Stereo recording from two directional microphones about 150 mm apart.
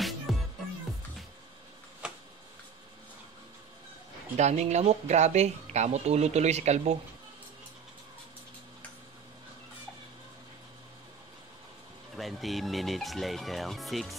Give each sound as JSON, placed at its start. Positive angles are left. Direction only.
{"t": 0.3, "sound": "music", "side_deg": 0}
{"t": 2.0, "sound": "a sound", "side_deg": -5}
{"t": 4.4, "sound": "speech", "side_deg": -50}
{"t": 12.2, "sound": "speech", "side_deg": 0}